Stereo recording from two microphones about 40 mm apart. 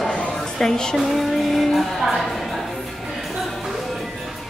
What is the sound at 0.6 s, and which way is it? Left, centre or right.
Speech, centre.